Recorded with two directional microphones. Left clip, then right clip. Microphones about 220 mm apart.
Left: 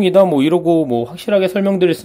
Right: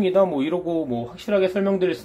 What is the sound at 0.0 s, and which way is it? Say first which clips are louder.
Speech: left 8 dB; 50° left (ahead or behind).